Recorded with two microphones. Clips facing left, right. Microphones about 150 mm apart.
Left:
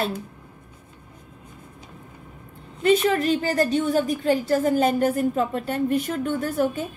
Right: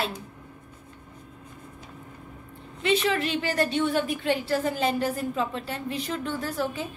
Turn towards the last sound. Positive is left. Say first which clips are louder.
# left 6 dB
turn(degrees=50)  # may be behind; listen again after turning